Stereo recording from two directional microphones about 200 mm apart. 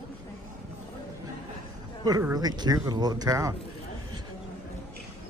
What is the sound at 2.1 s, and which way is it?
Speech, 20° right (ahead or behind).